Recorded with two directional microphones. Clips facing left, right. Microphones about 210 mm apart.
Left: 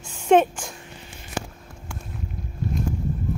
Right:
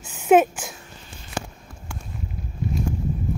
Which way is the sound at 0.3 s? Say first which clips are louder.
Right 1 dB; 5° right (ahead or behind).